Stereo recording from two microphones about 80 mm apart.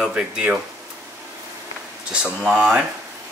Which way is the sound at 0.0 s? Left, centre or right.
Centre.